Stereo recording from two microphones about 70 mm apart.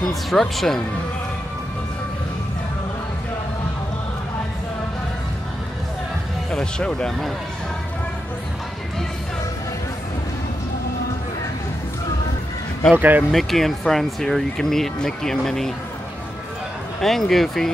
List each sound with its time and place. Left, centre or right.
0.1 s speech: centre
6.5 s speech: centre
12.9 s speech: right
13.3 s speech: centre
17.0 s speech: centre